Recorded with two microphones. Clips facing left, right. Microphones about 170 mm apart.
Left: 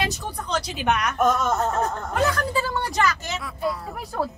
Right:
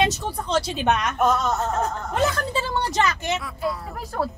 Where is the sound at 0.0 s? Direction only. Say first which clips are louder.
Right 5 dB; 25° right (ahead or behind).